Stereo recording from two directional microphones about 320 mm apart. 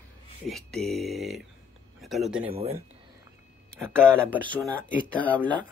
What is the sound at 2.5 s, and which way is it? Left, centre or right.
Speech, centre.